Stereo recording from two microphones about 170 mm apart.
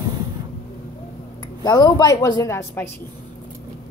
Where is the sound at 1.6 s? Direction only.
25° left (ahead or behind).